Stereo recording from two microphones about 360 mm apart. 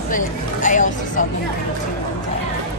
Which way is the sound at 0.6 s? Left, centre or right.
Left.